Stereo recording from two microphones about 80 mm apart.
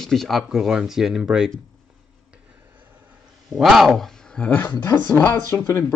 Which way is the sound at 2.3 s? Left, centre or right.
Centre.